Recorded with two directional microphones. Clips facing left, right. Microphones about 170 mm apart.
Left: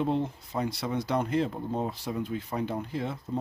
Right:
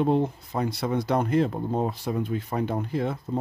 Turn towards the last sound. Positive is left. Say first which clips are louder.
# right 5 dB
turn(degrees=-55)  # may be behind; listen again after turning